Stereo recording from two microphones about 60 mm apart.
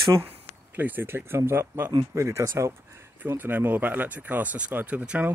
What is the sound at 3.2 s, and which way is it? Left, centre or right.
Speech, right.